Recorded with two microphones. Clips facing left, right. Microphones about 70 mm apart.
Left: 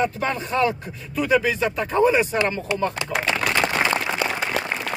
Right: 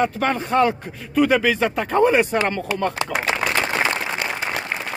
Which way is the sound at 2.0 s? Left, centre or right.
Right.